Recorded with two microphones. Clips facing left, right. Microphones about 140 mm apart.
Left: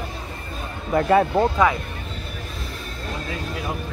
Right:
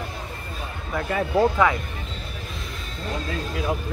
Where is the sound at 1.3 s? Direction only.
15° left (ahead or behind).